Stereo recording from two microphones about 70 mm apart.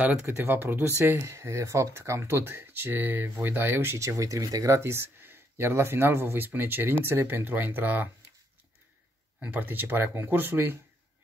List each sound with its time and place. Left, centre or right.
0.0 s speech: right
1.2 s speech: right
9.4 s speech: right